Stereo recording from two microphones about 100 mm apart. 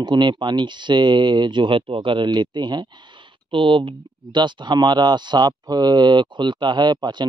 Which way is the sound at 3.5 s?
60° right (ahead or behind).